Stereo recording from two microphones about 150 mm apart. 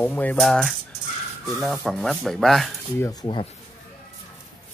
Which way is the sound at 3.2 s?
30° left (ahead or behind).